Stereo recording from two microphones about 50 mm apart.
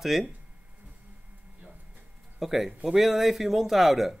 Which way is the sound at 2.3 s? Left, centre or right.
Centre.